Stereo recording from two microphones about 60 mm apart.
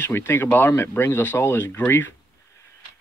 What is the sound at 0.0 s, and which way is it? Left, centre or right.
Speech, left.